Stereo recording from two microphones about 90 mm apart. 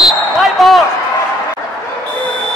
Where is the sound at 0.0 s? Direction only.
Centre (ahead or behind).